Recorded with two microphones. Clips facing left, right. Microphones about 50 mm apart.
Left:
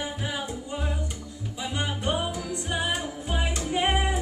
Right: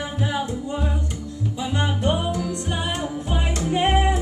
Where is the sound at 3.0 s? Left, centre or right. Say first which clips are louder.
Right 4 dB; centre.